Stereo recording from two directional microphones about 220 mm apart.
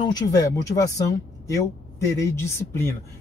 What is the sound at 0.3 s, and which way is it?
A man's voice, 15° left (ahead or behind).